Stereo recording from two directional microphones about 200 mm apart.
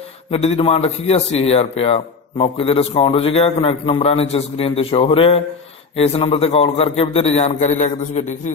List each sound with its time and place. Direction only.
0.3 s a man's voice: 30° left (ahead or behind)